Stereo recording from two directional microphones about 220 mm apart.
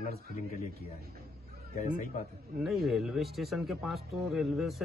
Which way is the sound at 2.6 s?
Centre (ahead or behind).